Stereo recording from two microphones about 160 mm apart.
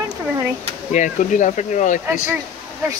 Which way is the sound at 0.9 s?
50° left (ahead or behind).